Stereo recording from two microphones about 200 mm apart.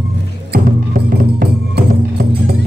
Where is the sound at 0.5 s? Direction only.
45° right (ahead or behind).